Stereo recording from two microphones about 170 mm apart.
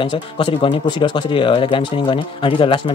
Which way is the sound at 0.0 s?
30° left (ahead or behind).